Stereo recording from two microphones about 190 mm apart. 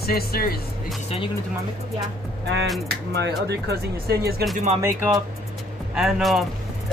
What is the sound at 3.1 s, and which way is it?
Speech, 60° right (ahead or behind).